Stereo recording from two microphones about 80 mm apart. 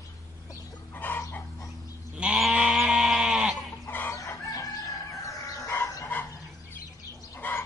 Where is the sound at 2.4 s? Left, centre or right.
Centre.